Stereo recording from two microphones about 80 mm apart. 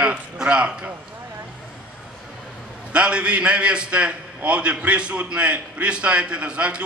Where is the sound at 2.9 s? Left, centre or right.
Centre.